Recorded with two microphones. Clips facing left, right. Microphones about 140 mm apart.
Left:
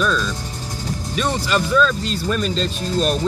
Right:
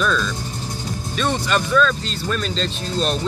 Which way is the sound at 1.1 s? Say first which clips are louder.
Even; 10° left (ahead or behind).